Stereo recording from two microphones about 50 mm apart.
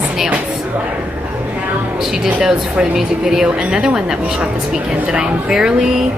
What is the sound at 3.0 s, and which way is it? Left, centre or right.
Speech, centre.